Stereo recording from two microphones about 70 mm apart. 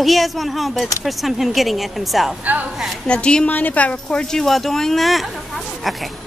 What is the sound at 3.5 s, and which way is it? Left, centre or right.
Speech, left.